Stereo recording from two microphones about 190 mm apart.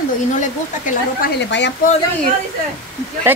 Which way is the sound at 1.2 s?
65° left (ahead or behind).